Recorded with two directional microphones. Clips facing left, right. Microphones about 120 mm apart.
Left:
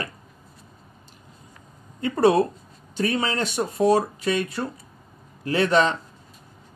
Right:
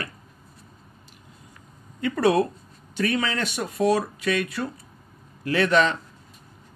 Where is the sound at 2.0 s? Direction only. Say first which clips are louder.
Left 2 dB; 30° left (ahead or behind).